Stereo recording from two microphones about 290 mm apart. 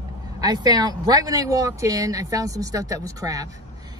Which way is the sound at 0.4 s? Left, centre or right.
Centre.